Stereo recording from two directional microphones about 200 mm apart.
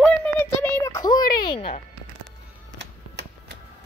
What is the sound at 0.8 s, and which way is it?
Speech, 20° left (ahead or behind).